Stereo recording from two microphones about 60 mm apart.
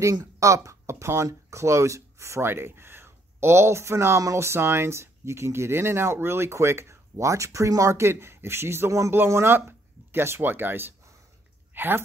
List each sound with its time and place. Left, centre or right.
0.1 s speech: right